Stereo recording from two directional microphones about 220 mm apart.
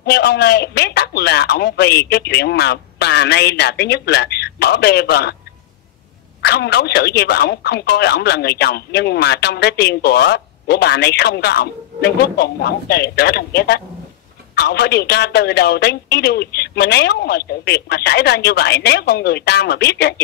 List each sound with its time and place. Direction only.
0.0 s speech: 50° left (ahead or behind)
6.4 s speech: 50° left (ahead or behind)